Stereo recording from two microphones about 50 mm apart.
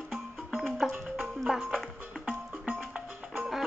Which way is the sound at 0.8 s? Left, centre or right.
Centre.